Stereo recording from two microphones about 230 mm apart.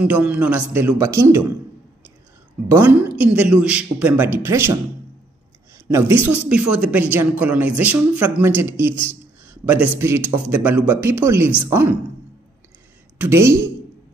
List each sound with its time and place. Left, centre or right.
0.0 s speech: centre
2.7 s speech: centre
5.9 s speech: centre
13.2 s speech: centre